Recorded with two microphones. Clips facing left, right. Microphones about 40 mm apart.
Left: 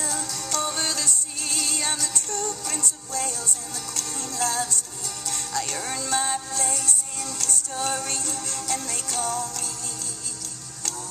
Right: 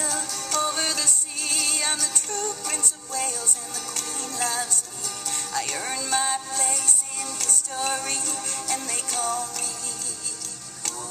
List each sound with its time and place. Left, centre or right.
0.0 s music: right
7.7 s music: centre